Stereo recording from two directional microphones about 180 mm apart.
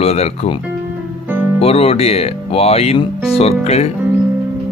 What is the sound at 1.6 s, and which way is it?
Speech, 35° left (ahead or behind).